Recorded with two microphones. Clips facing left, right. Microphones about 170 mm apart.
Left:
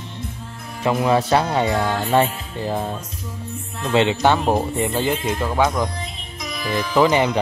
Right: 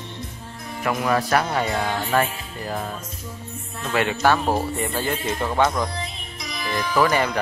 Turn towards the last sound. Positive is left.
turn(degrees=20)  # may be behind; listen again after turning